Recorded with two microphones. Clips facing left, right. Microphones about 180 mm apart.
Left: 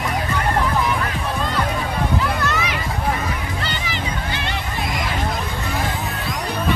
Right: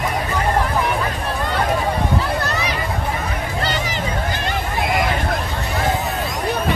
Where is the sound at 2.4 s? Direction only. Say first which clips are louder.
Even; 35° right (ahead or behind).